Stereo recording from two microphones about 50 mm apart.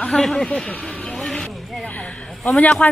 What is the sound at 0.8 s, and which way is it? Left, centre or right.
Vehicle, centre.